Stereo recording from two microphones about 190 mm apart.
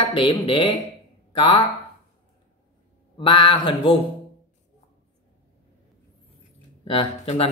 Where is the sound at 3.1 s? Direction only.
25° left (ahead or behind).